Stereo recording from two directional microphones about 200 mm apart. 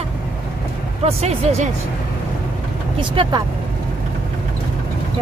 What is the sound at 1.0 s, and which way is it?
Speech, 30° right (ahead or behind).